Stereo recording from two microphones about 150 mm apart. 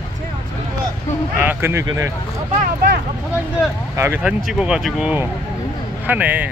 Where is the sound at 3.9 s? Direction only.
15° right (ahead or behind).